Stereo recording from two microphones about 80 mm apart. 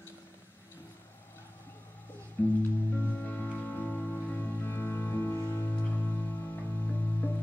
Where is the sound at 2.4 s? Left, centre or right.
Left.